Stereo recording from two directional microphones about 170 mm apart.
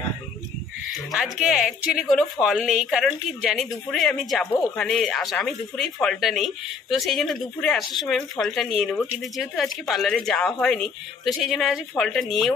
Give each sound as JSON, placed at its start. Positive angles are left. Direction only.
{"t": 1.1, "sound": "speech", "side_deg": -5}